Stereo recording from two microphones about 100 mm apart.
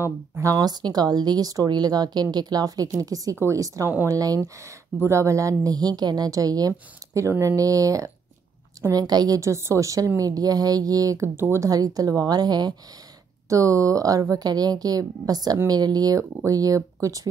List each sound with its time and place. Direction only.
0.0 s a woman's voice: 25° right (ahead or behind)
11.3 s speech: 25° right (ahead or behind)
11.7 s a woman's voice: 40° right (ahead or behind)
13.5 s a woman's voice: 30° right (ahead or behind)